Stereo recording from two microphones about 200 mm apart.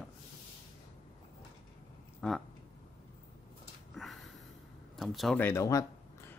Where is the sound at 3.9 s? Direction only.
Centre (ahead or behind).